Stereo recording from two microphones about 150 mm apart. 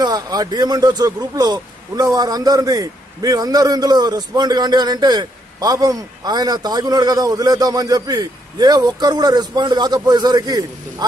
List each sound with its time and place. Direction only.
0.0 s speech: 25° right (ahead or behind)